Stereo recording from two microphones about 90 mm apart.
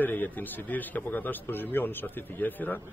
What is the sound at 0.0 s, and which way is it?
A man's voice, 20° left (ahead or behind).